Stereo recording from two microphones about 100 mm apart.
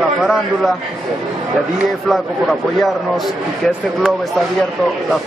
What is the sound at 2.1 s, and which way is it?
Speech, centre (ahead or behind).